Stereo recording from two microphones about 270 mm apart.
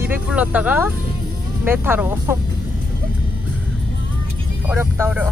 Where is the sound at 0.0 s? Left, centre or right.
Centre.